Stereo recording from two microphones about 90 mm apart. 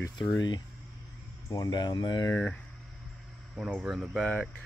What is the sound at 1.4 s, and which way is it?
Speech, 45° left (ahead or behind).